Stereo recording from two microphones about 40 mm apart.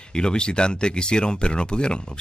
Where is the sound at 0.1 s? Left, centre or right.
Left.